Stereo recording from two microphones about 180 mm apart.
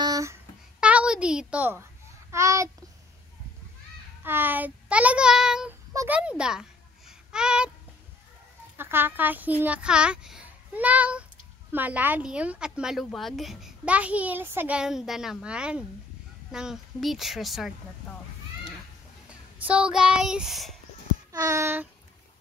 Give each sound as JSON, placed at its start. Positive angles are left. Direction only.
{"t": 0.0, "sound": "babbling", "side_deg": -20}
{"t": 0.7, "sound": "a sound", "side_deg": -5}
{"t": 2.3, "sound": "a child's voice", "side_deg": -15}
{"t": 4.2, "sound": "a child's voice", "side_deg": -10}
{"t": 8.7, "sound": "a child's voice", "side_deg": -10}
{"t": 19.2, "sound": "speech", "side_deg": -5}
{"t": 21.3, "sound": "a sound", "side_deg": -20}